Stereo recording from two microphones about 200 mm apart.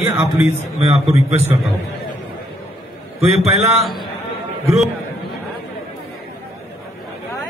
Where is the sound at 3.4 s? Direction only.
30° right (ahead or behind).